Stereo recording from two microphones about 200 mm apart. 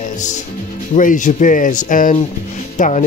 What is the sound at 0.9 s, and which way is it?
Speech, 40° left (ahead or behind).